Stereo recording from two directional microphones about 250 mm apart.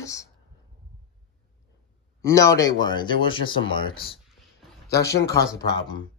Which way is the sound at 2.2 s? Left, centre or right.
Centre.